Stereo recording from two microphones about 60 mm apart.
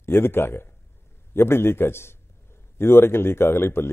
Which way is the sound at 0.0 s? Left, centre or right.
Left.